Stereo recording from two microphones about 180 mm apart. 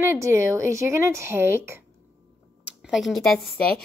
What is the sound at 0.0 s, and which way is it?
Speech, 15° right (ahead or behind).